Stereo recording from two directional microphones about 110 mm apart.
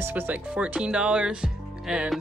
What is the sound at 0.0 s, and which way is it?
Speech, 20° right (ahead or behind).